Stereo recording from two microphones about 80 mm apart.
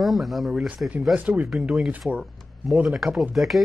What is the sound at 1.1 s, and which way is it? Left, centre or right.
Speech, centre.